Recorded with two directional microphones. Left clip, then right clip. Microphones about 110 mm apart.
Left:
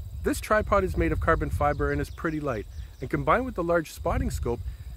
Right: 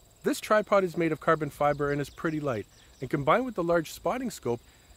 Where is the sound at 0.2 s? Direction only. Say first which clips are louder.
Even; 20° right (ahead or behind).